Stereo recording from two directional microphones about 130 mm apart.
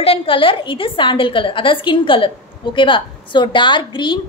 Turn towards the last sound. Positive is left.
turn(degrees=40)  # may be behind; listen again after turning